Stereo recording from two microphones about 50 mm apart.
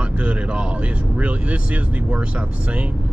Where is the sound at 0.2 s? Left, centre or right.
Right.